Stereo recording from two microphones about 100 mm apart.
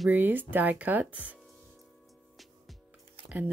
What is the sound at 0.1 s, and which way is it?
Speech, 20° right (ahead or behind).